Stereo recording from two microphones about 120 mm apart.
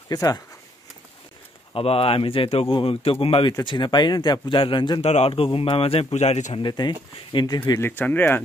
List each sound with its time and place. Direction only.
0.1 s speech: 30° left (ahead or behind)
1.7 s speech: 50° left (ahead or behind)
3.6 s speech: 40° left (ahead or behind)
5.0 s speech: 60° left (ahead or behind)
6.6 s speech: 35° left (ahead or behind)
7.8 s speech: 15° left (ahead or behind)